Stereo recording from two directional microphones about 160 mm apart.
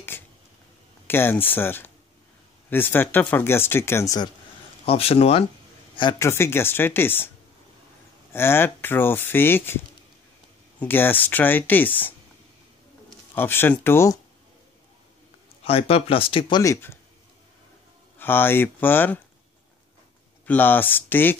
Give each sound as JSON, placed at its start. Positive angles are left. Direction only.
{"t": 0.1, "sound": "a sound", "side_deg": 15}
{"t": 1.0, "sound": "speech", "side_deg": 15}
{"t": 4.8, "sound": "speech", "side_deg": 40}
{"t": 5.9, "sound": "speech", "side_deg": 25}
{"t": 8.3, "sound": "speech", "side_deg": 15}
{"t": 10.8, "sound": "speech", "side_deg": 15}
{"t": 13.3, "sound": "speech", "side_deg": 15}
{"t": 15.6, "sound": "speech", "side_deg": 35}
{"t": 16.6, "sound": "speech", "side_deg": 15}
{"t": 18.2, "sound": "speech", "side_deg": 15}
{"t": 20.4, "sound": "speech", "side_deg": 10}